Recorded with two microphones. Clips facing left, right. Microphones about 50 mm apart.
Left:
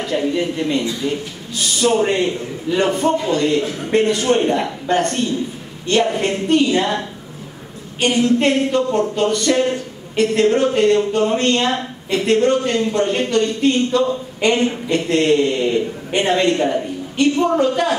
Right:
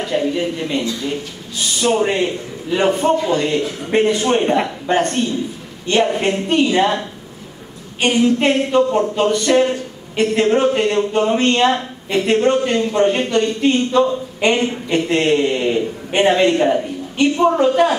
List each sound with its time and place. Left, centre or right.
0.0 s a man's voice: centre
8.0 s a man's voice: centre